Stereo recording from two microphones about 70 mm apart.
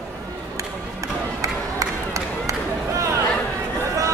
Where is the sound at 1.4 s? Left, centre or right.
Right.